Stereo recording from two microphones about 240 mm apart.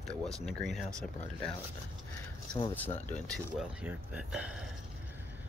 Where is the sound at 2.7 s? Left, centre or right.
Centre.